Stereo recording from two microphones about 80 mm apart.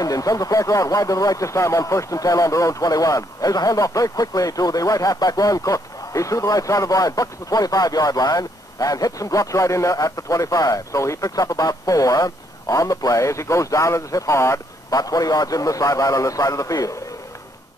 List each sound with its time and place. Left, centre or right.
0.0 s speech: left
15.0 s speech: left